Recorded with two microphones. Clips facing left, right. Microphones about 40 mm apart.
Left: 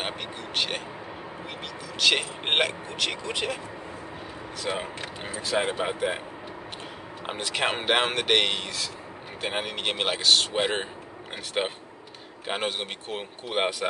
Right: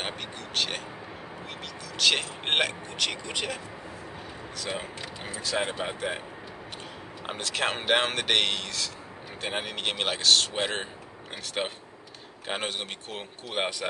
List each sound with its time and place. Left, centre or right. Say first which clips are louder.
0.6 s speech: left 1 dB; centre
2.0 s speech: left 2 dB; centre
4.6 s speech: left 4 dB; centre
7.2 s speech: left 2 dB; centre